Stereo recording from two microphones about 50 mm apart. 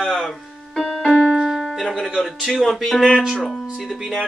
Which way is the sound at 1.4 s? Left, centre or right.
Centre.